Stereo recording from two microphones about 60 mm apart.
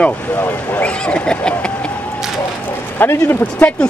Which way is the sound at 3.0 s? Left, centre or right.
Left.